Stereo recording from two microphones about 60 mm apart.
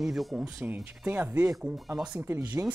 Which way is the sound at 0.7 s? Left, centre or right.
Right.